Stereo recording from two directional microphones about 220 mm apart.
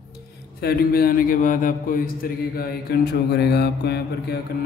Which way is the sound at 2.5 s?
45° left (ahead or behind).